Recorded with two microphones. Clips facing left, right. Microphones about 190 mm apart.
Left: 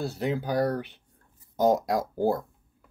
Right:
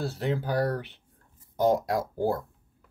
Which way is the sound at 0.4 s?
20° left (ahead or behind).